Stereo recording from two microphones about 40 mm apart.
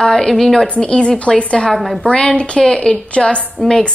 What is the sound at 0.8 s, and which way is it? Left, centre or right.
Speech, left.